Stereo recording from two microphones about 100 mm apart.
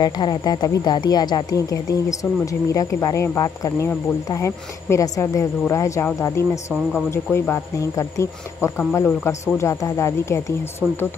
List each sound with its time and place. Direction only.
0.0 s speech: 45° left (ahead or behind); by 10.4 s 30° left (ahead or behind)